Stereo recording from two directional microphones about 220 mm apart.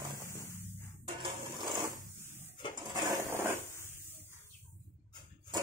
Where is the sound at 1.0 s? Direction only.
20° right (ahead or behind).